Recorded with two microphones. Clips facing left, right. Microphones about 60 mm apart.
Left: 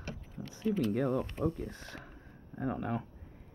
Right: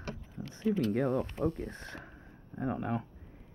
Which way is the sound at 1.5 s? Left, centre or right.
Right.